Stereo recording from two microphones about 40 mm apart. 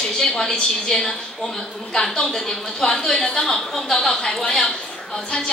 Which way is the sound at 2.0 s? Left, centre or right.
Centre.